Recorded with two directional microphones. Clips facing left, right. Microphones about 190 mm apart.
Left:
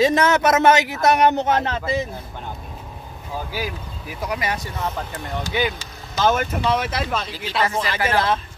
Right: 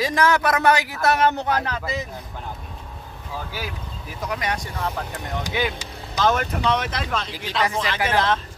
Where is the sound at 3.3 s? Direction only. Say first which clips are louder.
Left 4 dB; 10° left (ahead or behind).